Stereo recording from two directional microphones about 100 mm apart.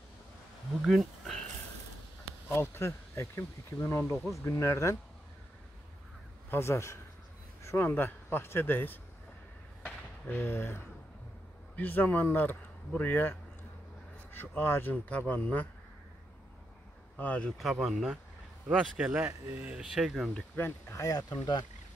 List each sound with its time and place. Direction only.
0.8 s speech: centre (ahead or behind)
2.5 s speech: 25° left (ahead or behind)
6.5 s speech: 30° left (ahead or behind)
9.8 s a sound: 20° left (ahead or behind)
11.7 s speech: 20° left (ahead or behind)
17.2 s speech: 10° left (ahead or behind)
17.6 s speech: centre (ahead or behind)
20.3 s speech: 20° left (ahead or behind)
20.9 s speech: 35° left (ahead or behind)